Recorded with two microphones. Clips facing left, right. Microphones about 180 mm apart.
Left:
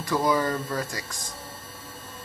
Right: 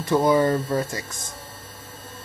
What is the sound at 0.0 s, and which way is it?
Speech, 25° right (ahead or behind).